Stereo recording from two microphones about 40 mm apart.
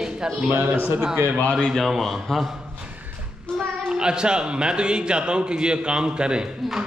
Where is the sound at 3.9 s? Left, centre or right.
Right.